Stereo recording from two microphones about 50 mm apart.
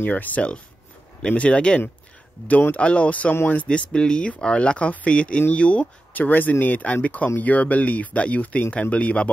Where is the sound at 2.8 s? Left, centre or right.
Left.